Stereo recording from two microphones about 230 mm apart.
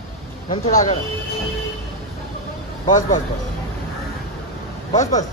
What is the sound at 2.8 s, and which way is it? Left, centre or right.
Speech, left.